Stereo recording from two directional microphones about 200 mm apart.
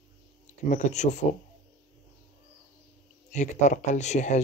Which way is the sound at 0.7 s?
35° left (ahead or behind).